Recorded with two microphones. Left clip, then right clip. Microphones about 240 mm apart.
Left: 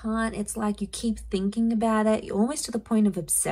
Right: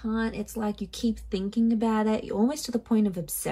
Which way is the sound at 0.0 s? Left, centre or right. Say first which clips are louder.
Left 2 dB; left.